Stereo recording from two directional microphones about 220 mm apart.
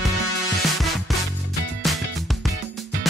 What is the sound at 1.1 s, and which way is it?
Music, centre (ahead or behind).